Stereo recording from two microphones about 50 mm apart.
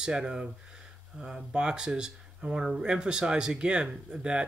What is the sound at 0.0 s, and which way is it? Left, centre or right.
Speech, centre.